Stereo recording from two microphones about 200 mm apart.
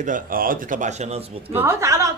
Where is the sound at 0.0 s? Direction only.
45° right (ahead or behind).